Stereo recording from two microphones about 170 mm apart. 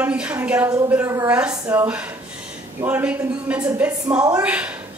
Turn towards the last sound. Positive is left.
turn(degrees=-10)  # may be behind; listen again after turning